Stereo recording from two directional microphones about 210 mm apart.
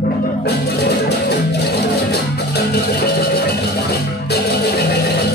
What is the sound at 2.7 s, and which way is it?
Music, 50° left (ahead or behind).